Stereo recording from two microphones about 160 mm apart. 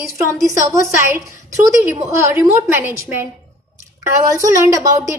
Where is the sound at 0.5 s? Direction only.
20° right (ahead or behind).